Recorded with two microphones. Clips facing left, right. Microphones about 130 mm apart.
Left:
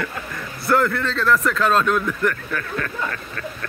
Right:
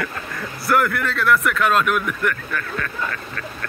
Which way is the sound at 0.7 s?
25° left (ahead or behind).